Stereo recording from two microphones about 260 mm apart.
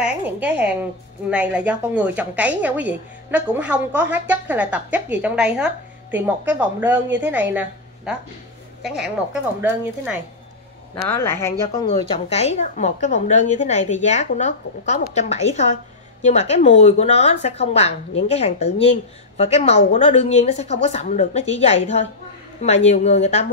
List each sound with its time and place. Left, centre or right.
0.0 s a woman's voice: centre
11.1 s a woman's voice: centre; by 23.4 s left